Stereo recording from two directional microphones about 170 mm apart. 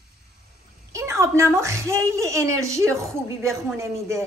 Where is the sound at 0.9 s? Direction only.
15° right (ahead or behind).